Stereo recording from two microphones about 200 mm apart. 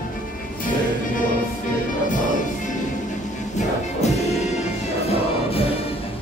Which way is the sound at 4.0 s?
35° left (ahead or behind).